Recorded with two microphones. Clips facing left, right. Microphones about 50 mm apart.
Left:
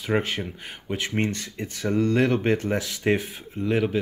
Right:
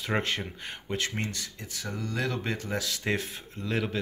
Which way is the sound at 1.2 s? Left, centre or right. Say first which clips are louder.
Left 8 dB; left.